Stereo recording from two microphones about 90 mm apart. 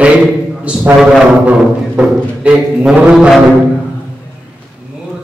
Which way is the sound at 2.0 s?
10° right (ahead or behind).